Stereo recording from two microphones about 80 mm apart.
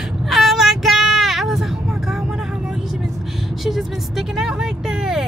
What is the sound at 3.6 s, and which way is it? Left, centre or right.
Speech, centre.